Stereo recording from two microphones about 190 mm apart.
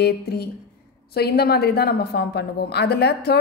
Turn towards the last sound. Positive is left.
turn(degrees=60)  # may be behind; listen again after turning